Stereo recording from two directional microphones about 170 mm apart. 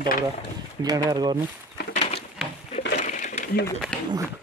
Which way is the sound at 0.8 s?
20° right (ahead or behind).